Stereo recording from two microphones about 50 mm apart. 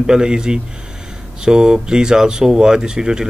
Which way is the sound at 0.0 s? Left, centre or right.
Centre.